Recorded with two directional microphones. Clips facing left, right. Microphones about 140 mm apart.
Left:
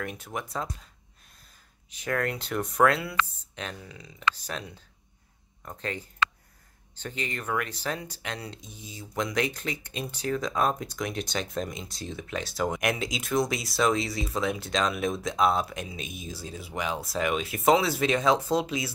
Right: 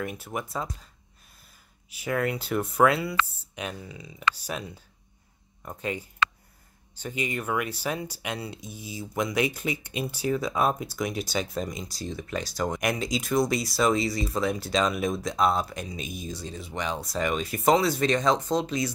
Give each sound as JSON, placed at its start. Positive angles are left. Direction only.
{"t": 0.0, "sound": "speech", "side_deg": -5}
{"t": 1.9, "sound": "speech", "side_deg": -5}